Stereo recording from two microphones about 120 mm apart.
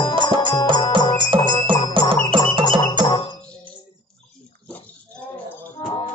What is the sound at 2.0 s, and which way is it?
Music, 45° right (ahead or behind).